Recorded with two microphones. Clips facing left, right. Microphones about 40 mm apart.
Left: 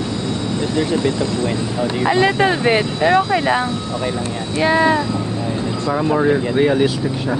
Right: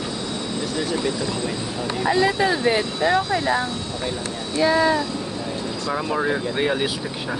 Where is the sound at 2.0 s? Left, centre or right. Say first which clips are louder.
Left 4 dB; left.